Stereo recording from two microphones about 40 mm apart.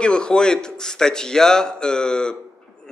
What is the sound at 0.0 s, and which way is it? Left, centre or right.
A man's voice, left.